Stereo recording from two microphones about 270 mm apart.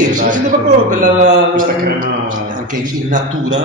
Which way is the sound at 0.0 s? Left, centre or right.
Right.